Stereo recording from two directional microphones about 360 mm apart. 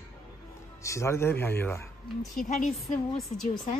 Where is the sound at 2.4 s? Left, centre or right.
Left.